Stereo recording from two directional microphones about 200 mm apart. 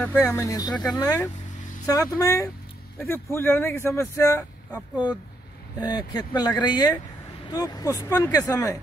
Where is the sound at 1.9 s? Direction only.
15° left (ahead or behind).